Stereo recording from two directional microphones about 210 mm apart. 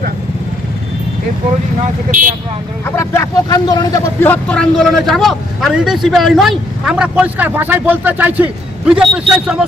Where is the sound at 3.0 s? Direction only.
15° left (ahead or behind).